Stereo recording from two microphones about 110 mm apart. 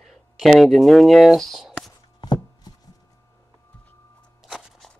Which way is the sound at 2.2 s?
40° left (ahead or behind).